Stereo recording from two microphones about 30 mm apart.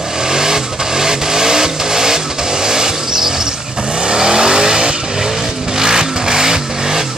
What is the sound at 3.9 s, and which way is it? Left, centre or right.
Vehicle, right.